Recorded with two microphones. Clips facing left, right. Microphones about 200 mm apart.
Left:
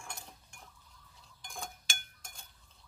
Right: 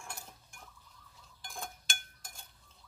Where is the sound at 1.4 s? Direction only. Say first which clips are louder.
Even; centre (ahead or behind).